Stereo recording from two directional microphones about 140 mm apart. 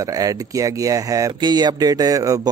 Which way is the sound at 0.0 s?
25° right (ahead or behind).